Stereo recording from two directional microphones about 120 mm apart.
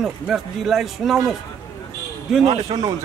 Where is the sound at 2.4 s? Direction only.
35° right (ahead or behind).